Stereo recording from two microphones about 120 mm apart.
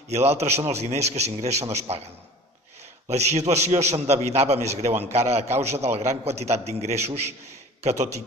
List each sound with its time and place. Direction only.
0.1 s a man's voice: 65° right (ahead or behind)
3.1 s a man's voice: 65° right (ahead or behind)